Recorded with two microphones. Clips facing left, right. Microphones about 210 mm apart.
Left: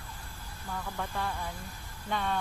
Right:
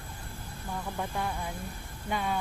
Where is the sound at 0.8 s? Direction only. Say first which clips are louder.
Right 2 dB; 20° right (ahead or behind).